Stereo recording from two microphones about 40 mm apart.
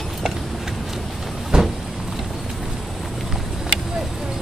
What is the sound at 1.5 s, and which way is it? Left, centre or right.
Vehicle, right.